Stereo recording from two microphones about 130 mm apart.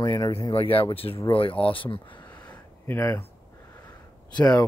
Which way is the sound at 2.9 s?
20° left (ahead or behind).